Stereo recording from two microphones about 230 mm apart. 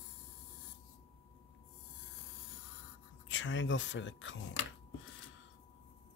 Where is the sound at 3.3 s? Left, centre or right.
Left.